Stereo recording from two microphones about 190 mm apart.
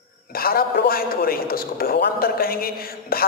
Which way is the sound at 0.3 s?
50° left (ahead or behind).